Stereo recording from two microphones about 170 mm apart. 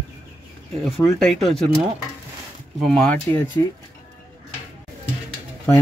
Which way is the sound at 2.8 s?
5° left (ahead or behind).